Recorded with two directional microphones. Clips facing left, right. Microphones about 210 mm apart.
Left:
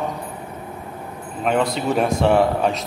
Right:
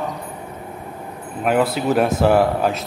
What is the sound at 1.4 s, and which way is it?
A man's voice, 5° right (ahead or behind).